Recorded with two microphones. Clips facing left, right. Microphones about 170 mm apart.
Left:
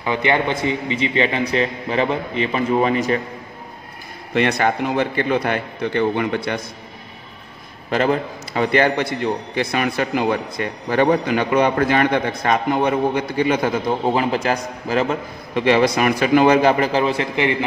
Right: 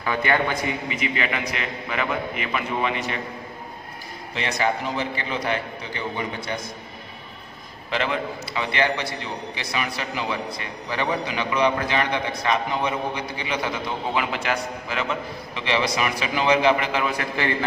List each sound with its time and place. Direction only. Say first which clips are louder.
0.0 s a man's voice: left 4 dB; 20° left (ahead or behind); by 3.2 s 40° left (ahead or behind)
4.3 s a man's voice: left 7 dB; 60° left (ahead or behind)
7.9 s a man's voice: left 7 dB; 45° left (ahead or behind); by 17.6 s 20° left (ahead or behind)